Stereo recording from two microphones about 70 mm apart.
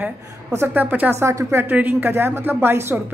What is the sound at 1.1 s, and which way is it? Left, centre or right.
A woman's voice, right.